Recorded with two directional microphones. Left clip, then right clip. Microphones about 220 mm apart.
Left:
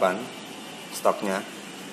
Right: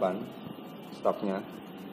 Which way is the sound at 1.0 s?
15° left (ahead or behind).